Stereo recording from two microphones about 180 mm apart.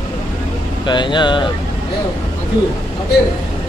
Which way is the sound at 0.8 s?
25° left (ahead or behind).